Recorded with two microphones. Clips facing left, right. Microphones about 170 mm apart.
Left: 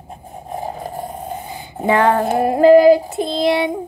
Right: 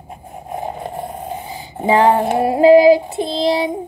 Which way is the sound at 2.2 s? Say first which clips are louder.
Even; centre (ahead or behind).